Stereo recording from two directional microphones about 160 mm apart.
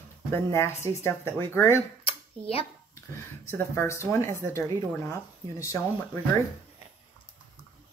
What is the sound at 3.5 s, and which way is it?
Speech, 15° left (ahead or behind).